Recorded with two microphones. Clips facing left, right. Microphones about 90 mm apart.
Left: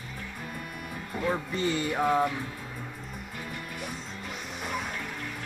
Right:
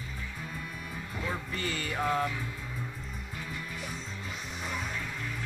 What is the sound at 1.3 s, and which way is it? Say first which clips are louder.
Speech: left 7 dB; 20° left (ahead or behind).